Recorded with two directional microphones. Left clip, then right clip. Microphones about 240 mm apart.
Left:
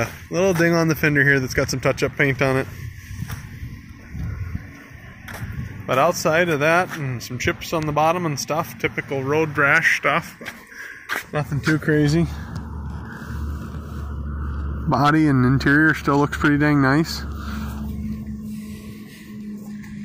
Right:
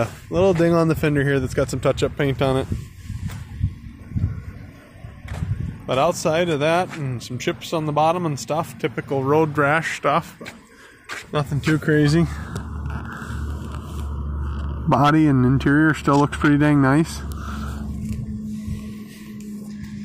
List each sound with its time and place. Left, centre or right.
0.0 s speech: centre
5.9 s speech: centre
9.1 s speech: right
11.3 s speech: centre
14.9 s speech: centre